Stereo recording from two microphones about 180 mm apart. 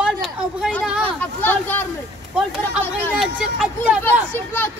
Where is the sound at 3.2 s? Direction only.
5° right (ahead or behind).